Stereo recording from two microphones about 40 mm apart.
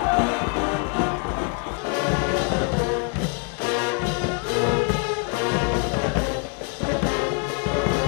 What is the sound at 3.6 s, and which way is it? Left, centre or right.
Brass instrument, left.